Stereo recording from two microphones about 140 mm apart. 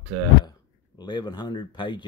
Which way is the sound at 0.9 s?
30° left (ahead or behind).